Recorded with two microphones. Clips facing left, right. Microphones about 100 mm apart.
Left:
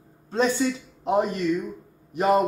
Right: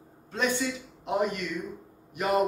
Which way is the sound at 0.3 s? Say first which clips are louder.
Left 6 dB; 35° left (ahead or behind).